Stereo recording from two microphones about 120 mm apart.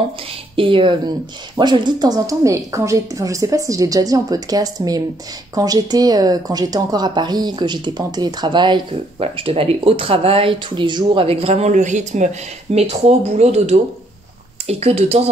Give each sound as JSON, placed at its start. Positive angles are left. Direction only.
{"t": 0.6, "sound": "a woman's voice", "side_deg": -45}
{"t": 9.2, "sound": "speech", "side_deg": -55}
{"t": 11.2, "sound": "a woman's voice", "side_deg": -55}
{"t": 12.7, "sound": "speech", "side_deg": -60}